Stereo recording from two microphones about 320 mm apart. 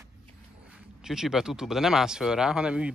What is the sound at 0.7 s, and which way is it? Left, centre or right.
Speech, centre.